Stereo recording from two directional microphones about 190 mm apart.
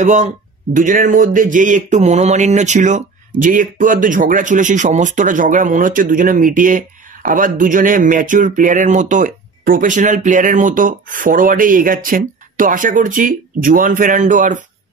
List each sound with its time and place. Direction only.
0.0 s speech: 40° right (ahead or behind)